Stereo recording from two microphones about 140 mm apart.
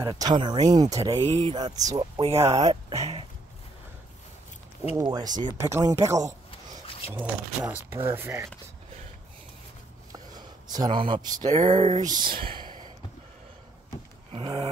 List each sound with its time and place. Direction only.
0.0 s speech: 25° right (ahead or behind)
1.2 s speech: 35° right (ahead or behind)
2.2 s speech: 45° right (ahead or behind)
2.6 s speech: 25° right (ahead or behind)
5.0 s speech: 30° right (ahead or behind)
7.9 s speech: 20° right (ahead or behind)
10.1 s a sound: 30° right (ahead or behind)
11.6 s speech: 35° right (ahead or behind)
14.3 s a sound: 40° right (ahead or behind)